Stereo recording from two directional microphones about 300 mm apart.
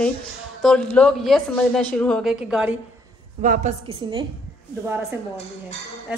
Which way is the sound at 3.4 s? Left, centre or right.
Right.